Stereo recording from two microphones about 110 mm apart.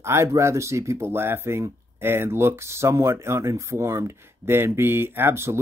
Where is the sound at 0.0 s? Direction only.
25° right (ahead or behind).